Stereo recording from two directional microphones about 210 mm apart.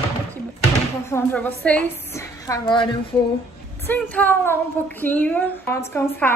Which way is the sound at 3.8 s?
5° left (ahead or behind).